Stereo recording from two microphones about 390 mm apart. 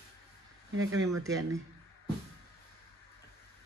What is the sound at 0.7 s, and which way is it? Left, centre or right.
Speech, right.